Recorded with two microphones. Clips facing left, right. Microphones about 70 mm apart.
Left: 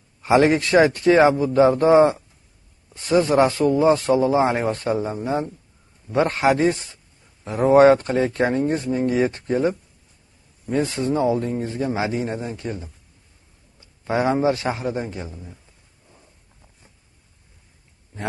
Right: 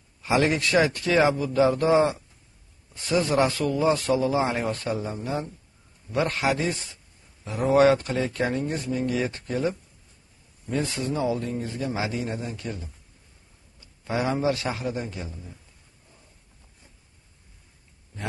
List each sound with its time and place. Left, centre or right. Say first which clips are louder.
0.2 s a man's voice: left 6 dB; left